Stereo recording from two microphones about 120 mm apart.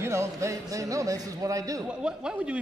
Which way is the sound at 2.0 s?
5° right (ahead or behind).